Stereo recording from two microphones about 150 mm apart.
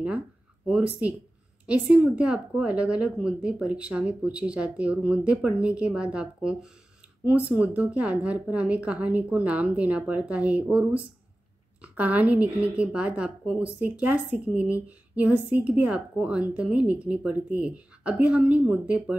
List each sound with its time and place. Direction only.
0.7 s speech: 10° right (ahead or behind)